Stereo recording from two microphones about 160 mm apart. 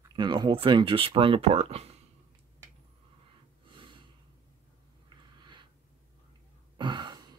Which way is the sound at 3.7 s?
30° right (ahead or behind).